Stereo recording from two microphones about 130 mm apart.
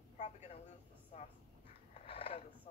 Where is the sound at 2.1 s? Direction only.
45° left (ahead or behind).